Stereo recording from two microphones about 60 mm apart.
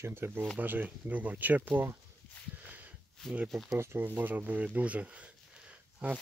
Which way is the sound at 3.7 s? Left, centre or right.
Right.